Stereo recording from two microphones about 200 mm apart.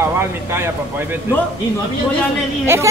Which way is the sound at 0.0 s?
10° right (ahead or behind).